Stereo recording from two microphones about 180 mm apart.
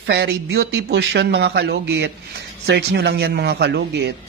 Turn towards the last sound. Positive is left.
turn(degrees=-70)  # may be behind; listen again after turning